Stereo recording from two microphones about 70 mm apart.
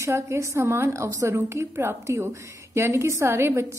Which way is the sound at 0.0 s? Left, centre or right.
Right.